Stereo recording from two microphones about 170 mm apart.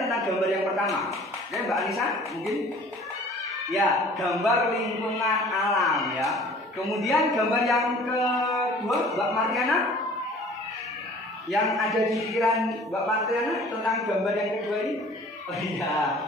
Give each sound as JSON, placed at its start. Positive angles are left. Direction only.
{"t": 0.0, "sound": "a man's voice", "side_deg": 0}
{"t": 3.7, "sound": "a man's voice", "side_deg": 0}
{"t": 11.5, "sound": "a man's voice", "side_deg": 0}